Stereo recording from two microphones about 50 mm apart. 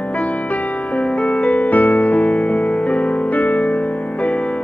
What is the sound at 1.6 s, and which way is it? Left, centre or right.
Music, left.